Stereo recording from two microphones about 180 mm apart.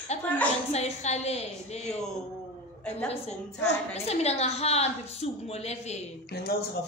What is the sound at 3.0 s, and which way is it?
A woman's voice, 35° left (ahead or behind).